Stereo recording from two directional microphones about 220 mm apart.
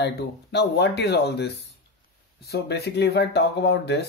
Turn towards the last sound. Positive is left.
turn(degrees=50)  # may be behind; listen again after turning